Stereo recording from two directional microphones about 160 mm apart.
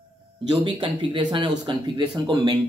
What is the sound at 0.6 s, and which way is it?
Speech, 30° right (ahead or behind).